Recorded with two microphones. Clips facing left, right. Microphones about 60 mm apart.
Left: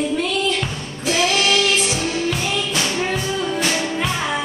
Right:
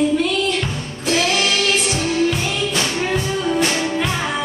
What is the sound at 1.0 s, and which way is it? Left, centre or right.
Music, centre.